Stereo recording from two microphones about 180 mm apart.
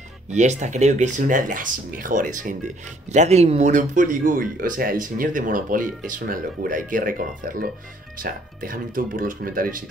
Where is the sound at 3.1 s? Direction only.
40° right (ahead or behind).